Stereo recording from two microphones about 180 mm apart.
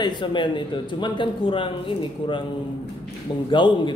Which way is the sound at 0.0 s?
25° left (ahead or behind).